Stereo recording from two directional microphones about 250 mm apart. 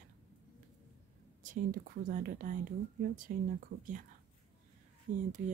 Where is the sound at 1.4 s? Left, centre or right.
Right.